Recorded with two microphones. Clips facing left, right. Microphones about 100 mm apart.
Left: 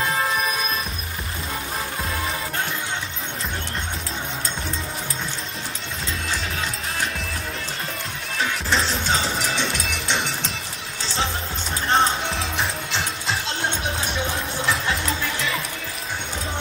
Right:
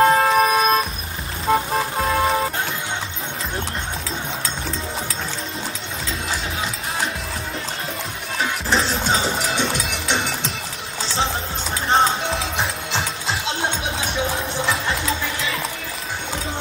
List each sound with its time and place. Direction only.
0.0 s music: 55° right (ahead or behind)
8.6 s music: 30° right (ahead or behind)
11.9 s music: centre (ahead or behind)
14.7 s music: 5° right (ahead or behind)